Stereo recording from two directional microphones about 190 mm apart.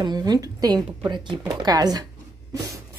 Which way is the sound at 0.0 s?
20° right (ahead or behind).